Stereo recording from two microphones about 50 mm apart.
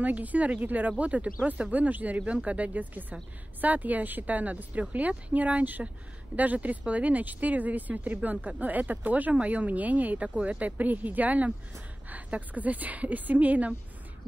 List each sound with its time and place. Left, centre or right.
0.0 s speech: right